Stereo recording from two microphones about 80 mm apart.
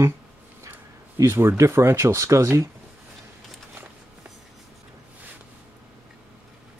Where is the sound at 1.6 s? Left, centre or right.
Right.